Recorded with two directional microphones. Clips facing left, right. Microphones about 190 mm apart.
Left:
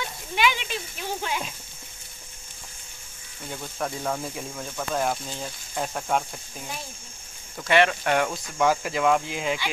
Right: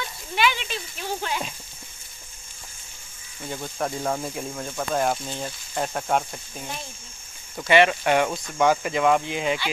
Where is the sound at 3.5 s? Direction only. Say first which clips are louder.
Right 3 dB; 10° right (ahead or behind).